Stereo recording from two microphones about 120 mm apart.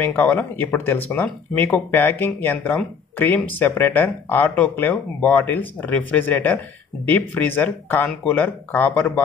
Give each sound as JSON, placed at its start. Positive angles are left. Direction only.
{"t": 0.0, "sound": "speech", "side_deg": 15}